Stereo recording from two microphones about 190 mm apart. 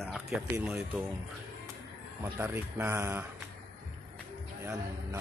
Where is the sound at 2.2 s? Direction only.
10° right (ahead or behind).